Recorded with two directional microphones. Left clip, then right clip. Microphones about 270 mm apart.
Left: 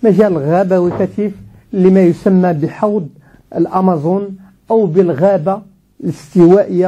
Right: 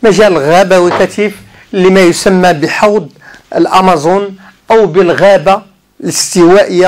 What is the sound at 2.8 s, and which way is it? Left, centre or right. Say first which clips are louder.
Speech: right 7 dB; right.